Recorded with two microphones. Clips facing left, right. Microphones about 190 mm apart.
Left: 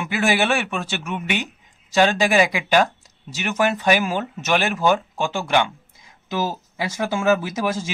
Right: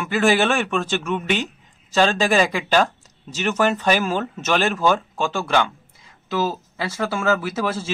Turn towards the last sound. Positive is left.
turn(degrees=15)  # may be behind; listen again after turning